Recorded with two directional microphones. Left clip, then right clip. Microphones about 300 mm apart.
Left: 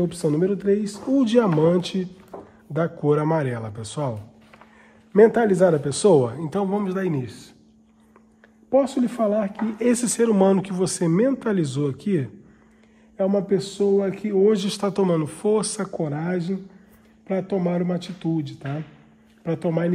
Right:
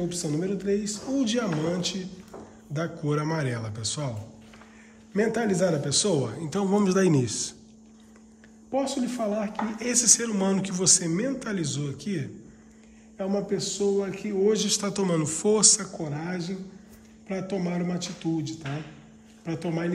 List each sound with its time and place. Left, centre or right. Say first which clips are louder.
0.1 s a woman's voice: left 7 dB; centre
2.3 s a sound: left 6 dB; centre
2.7 s a man's voice: left 8 dB; centre
5.1 s a man's voice: left 10 dB; centre
8.7 s a woman's voice: left 8 dB; centre